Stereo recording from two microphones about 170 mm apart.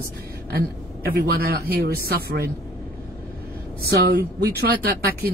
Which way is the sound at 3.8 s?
70° right (ahead or behind).